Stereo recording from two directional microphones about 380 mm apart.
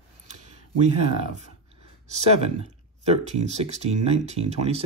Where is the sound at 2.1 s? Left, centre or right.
Centre.